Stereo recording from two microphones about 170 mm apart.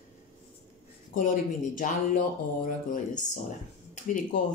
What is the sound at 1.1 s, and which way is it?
Speech, 50° left (ahead or behind).